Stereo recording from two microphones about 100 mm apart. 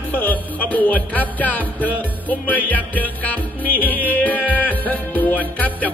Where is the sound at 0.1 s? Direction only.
15° left (ahead or behind).